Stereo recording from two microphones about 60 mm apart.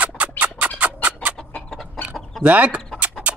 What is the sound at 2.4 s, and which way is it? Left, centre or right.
Speech, right.